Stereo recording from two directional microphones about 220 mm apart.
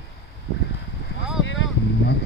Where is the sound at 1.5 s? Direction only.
55° left (ahead or behind).